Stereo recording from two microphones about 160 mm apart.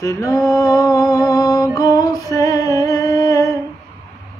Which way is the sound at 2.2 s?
20° left (ahead or behind).